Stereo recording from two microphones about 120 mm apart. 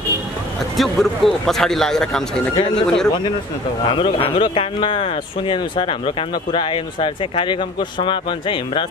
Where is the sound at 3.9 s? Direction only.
45° left (ahead or behind).